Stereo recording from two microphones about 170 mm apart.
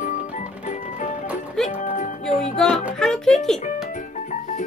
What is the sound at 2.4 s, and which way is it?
Music, 5° left (ahead or behind).